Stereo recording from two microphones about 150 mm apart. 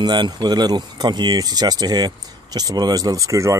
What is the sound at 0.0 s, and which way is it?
Speech, 30° right (ahead or behind).